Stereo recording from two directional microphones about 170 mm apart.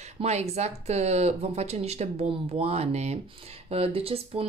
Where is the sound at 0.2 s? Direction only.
40° right (ahead or behind).